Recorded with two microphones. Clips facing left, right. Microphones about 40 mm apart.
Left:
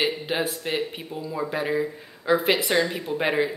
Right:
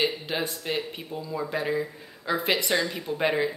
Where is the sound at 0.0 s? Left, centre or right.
Centre.